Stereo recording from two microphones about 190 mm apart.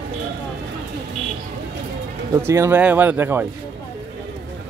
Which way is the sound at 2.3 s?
15° right (ahead or behind).